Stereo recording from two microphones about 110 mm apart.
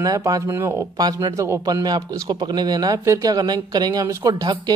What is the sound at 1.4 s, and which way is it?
Speech, 25° right (ahead or behind).